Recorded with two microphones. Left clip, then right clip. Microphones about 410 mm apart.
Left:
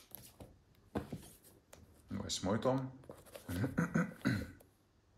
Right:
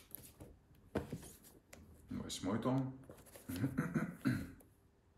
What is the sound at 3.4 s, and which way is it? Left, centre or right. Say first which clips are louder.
Beatboxing: left 2 dB; centre.